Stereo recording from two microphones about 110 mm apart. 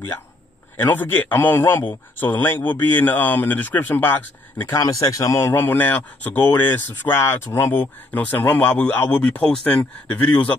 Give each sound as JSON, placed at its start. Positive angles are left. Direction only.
{"t": 0.7, "sound": "a man's voice", "side_deg": 15}
{"t": 4.7, "sound": "a man's voice", "side_deg": 30}